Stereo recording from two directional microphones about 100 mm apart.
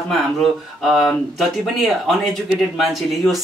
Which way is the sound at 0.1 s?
Centre (ahead or behind).